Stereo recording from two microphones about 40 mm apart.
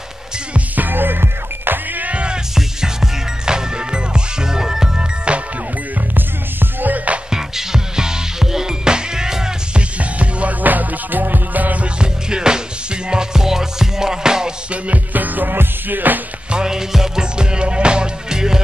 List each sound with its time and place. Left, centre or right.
0.7 s music: right
2.0 s music: right
2.5 s music: centre
6.1 s music: right
7.2 s music: centre
9.8 s music: right
10.6 s music: right
11.8 s music: right
15.1 s music: right
16.5 s music: centre